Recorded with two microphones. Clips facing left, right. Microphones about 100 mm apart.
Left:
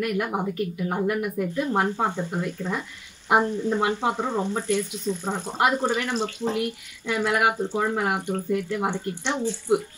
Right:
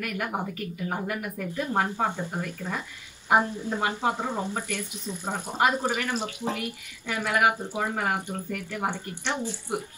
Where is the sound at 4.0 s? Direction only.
20° left (ahead or behind).